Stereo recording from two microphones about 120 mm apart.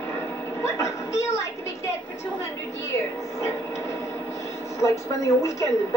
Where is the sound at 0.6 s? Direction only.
25° left (ahead or behind).